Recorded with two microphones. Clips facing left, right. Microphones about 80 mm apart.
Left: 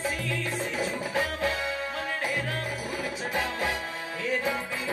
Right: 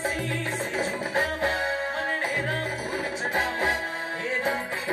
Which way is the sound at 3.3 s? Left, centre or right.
Right.